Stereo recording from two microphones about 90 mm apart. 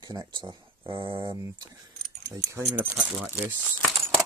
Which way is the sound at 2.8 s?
25° right (ahead or behind).